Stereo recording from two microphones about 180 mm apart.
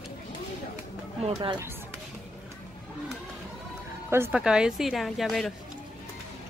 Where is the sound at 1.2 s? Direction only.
35° right (ahead or behind).